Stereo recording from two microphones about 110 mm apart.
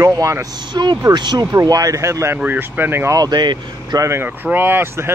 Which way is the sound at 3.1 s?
40° right (ahead or behind).